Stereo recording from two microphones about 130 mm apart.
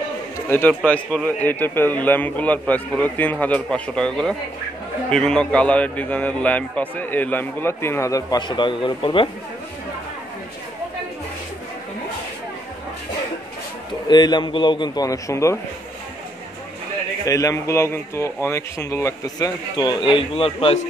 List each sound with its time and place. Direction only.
0.5 s a man's voice: 15° left (ahead or behind); by 9.3 s 40° left (ahead or behind)
14.0 s a man's voice: 35° left (ahead or behind)
17.2 s speech: 25° left (ahead or behind); by 20.8 s 50° left (ahead or behind)